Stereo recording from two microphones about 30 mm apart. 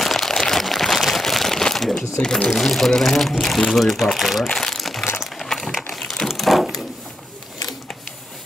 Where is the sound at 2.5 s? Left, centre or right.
Centre.